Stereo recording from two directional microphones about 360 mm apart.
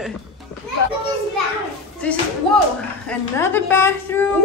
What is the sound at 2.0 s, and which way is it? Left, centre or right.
A woman's voice, centre.